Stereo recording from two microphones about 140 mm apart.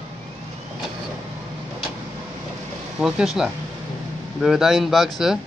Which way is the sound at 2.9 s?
5° right (ahead or behind).